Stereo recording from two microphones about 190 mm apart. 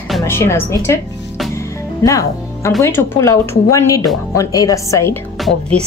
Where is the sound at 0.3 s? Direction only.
15° left (ahead or behind).